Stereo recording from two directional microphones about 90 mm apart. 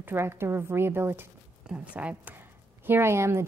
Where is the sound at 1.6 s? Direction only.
15° right (ahead or behind).